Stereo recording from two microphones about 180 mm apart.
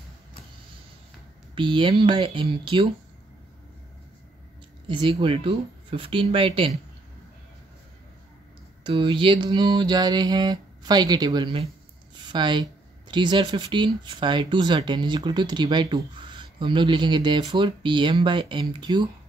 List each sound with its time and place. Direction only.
1.5 s speech: 25° right (ahead or behind)
4.8 s speech: 25° right (ahead or behind)
8.8 s speech: 25° right (ahead or behind)